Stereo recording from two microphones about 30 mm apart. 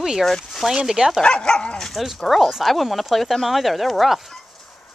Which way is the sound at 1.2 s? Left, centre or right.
Left.